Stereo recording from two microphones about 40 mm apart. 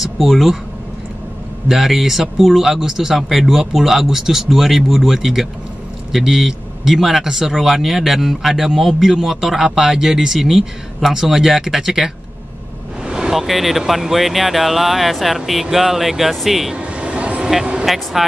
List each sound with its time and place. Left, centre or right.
0.0 s speech: centre
1.7 s speech: centre
16.7 s a sound: right
17.8 s speech: centre